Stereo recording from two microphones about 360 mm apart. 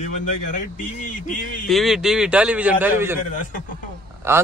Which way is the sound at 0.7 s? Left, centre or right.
Left.